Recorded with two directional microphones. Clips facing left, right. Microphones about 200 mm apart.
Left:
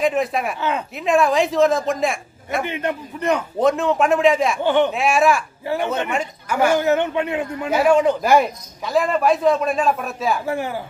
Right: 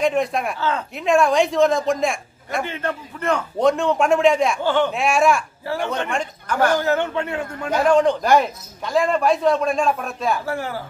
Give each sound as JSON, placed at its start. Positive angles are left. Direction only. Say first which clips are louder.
{"t": 0.0, "sound": "a man's voice", "louder": "even", "side_deg": 0}
{"t": 0.6, "sound": "a man's voice", "louder": "even", "side_deg": 15}
{"t": 0.9, "sound": "a man's voice", "louder": "right 1 dB", "side_deg": 0}
{"t": 2.6, "sound": "a man's voice", "louder": "left 2 dB", "side_deg": 15}
{"t": 3.5, "sound": "a man's voice", "louder": "right 1 dB", "side_deg": 0}
{"t": 4.6, "sound": "a man's voice", "louder": "left 4 dB", "side_deg": 15}
{"t": 4.9, "sound": "a man's voice", "louder": "left 1 dB", "side_deg": 0}
{"t": 10.4, "sound": "a man's voice", "louder": "left 2 dB", "side_deg": 20}